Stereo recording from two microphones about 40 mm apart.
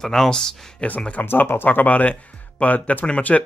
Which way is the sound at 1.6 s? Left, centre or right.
Left.